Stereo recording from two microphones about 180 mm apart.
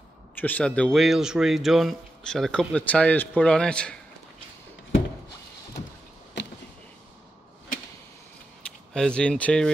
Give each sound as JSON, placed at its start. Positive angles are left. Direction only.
{"t": 0.4, "sound": "speech", "side_deg": 10}
{"t": 6.4, "sound": "power windows", "side_deg": 75}
{"t": 8.6, "sound": "speech", "side_deg": 5}